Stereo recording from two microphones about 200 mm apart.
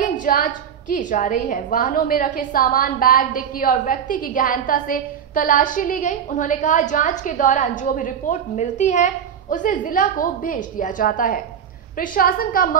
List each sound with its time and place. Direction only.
0.0 s a woman's voice: 45° left (ahead or behind)